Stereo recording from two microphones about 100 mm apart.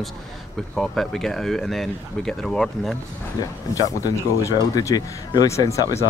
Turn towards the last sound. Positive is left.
turn(degrees=35)  # may be behind; listen again after turning